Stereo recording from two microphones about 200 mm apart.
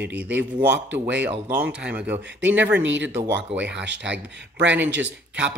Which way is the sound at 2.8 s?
65° right (ahead or behind).